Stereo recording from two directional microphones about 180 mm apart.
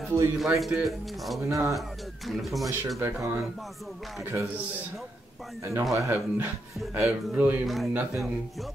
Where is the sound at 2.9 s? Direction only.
15° right (ahead or behind).